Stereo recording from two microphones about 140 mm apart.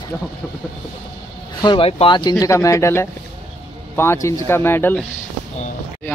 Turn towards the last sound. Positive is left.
turn(degrees=15)  # may be behind; listen again after turning